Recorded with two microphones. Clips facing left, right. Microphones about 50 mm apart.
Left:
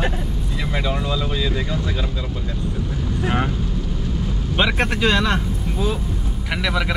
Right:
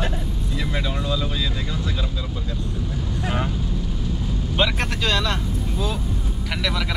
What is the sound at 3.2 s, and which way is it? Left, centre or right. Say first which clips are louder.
Speech: left 4 dB; left.